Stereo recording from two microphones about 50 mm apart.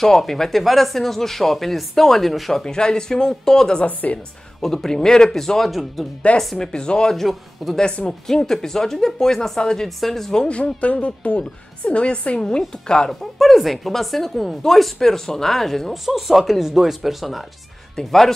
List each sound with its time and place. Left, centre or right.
0.0 s speech: centre
2.6 s speech: centre
3.8 s a woman's voice: left
4.6 s speech: centre
6.7 s speech: centre
7.2 s speech: centre
7.7 s a woman's voice: centre
10.5 s a woman's voice: left
13.1 s speech: centre